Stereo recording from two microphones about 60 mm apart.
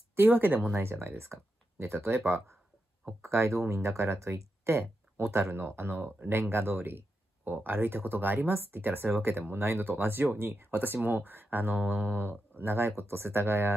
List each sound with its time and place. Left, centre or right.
0.1 s speech: right